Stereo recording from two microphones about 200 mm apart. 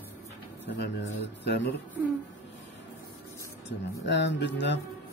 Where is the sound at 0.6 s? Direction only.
60° left (ahead or behind).